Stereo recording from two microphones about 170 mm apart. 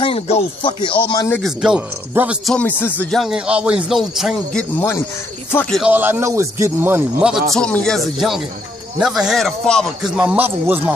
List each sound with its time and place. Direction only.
0.0 s speech: 35° left (ahead or behind)
1.4 s speech: 5° right (ahead or behind)
2.5 s speech: 10° left (ahead or behind)
4.7 s speech: 15° left (ahead or behind)
5.8 s speech: 10° right (ahead or behind)
7.5 s speech: 5° left (ahead or behind); by 10.8 s 10° right (ahead or behind)